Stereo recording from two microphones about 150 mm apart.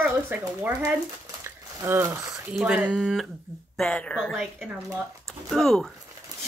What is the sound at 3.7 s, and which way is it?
A woman's voice, 5° left (ahead or behind).